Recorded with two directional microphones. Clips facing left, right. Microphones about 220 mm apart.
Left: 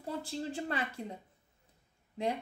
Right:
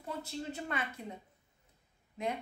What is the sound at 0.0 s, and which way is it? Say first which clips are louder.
Speech: left 3 dB; 30° left (ahead or behind).